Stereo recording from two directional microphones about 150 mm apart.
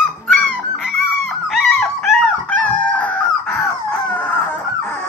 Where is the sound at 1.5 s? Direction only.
Centre (ahead or behind).